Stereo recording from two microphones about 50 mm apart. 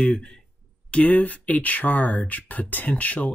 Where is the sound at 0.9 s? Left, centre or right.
Left.